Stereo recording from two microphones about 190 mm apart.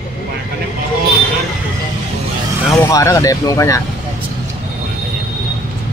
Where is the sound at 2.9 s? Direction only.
15° left (ahead or behind).